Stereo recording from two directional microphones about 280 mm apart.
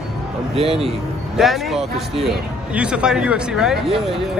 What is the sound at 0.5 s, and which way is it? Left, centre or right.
Speech, centre.